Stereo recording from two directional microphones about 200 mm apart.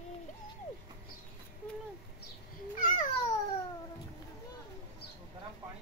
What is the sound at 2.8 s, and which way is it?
Babbling, 40° left (ahead or behind).